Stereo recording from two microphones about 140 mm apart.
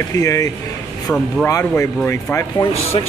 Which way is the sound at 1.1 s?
10° left (ahead or behind).